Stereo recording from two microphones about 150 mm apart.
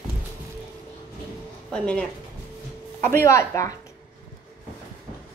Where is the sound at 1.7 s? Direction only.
5° left (ahead or behind).